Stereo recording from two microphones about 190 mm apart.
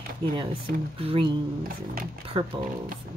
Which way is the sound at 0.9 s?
30° right (ahead or behind).